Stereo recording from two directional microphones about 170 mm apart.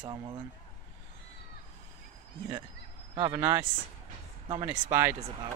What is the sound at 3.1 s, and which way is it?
Speech, 20° right (ahead or behind).